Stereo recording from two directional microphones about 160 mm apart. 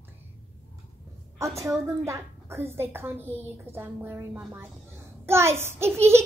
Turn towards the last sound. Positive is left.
turn(degrees=-15)  # may be behind; listen again after turning